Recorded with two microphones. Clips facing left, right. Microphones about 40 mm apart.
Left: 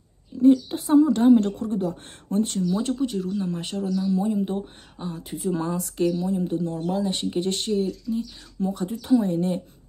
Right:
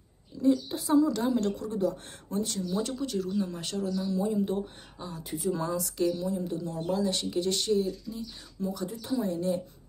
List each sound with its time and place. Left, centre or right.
0.4 s speech: left
3.0 s speech: centre; by 9.6 s left